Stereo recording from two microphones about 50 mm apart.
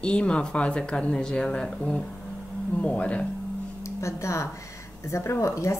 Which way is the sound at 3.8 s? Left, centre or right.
Left.